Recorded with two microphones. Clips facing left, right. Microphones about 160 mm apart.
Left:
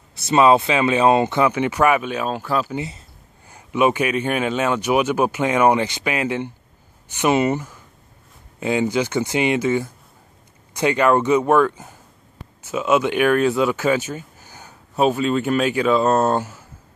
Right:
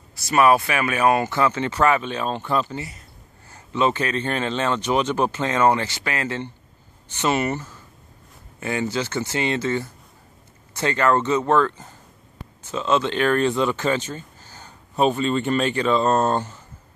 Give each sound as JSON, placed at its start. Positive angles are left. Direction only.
{"t": 0.1, "sound": "speech", "side_deg": 20}
{"t": 2.7, "sound": "speech", "side_deg": 20}